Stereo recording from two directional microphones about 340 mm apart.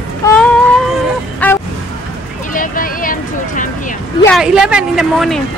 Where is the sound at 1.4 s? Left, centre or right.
Centre.